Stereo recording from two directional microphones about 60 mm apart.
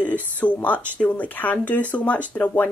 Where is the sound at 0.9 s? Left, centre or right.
Left.